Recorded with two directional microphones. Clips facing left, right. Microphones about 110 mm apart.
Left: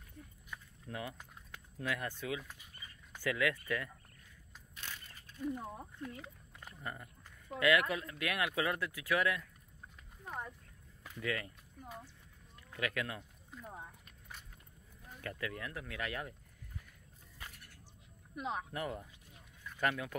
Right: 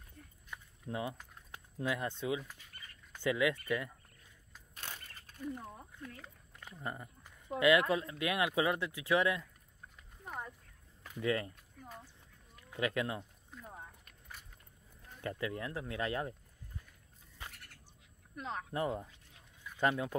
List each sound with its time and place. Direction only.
0.5 s a sound: 20° right (ahead or behind)
1.8 s speech: 25° right (ahead or behind)
4.7 s single-lens reflex camera: 45° right (ahead or behind)
5.4 s speech: 15° left (ahead or behind)
7.0 s speech: 20° right (ahead or behind)
10.2 s speech: 5° right (ahead or behind)
11.1 s speech: 30° right (ahead or behind)
11.8 s speech: 5° left (ahead or behind)
12.7 s speech: 25° right (ahead or behind)
13.5 s a sound: 5° left (ahead or behind)
15.2 s speech: 25° right (ahead or behind)
18.3 s speech: 5° left (ahead or behind)
18.7 s speech: 25° right (ahead or behind)